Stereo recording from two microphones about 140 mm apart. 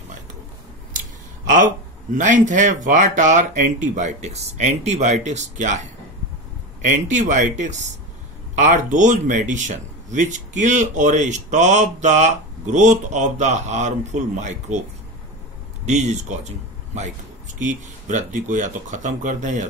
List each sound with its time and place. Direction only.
2.1 s speech: 65° right (ahead or behind)
6.8 s speech: 60° right (ahead or behind)
15.8 s speech: 55° right (ahead or behind)